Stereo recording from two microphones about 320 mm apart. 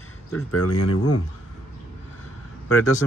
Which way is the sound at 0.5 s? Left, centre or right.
Left.